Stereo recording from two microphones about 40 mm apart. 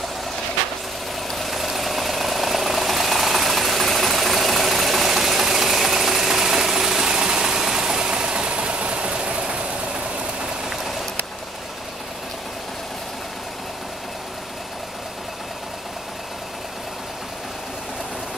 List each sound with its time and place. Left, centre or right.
1.3 s vehicle: centre; by 9.6 s right